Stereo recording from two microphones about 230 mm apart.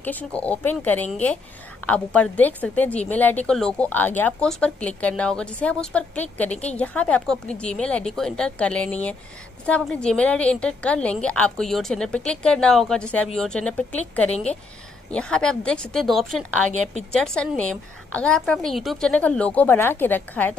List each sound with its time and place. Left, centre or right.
0.0 s a woman's voice: centre
14.3 s speech: left
15.0 s a woman's voice: centre